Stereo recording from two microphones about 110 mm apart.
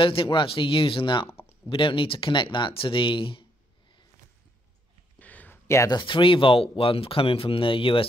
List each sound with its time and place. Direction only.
0.0 s speech: 50° left (ahead or behind)
5.2 s a sound: 15° left (ahead or behind)
5.9 s speech: 45° left (ahead or behind)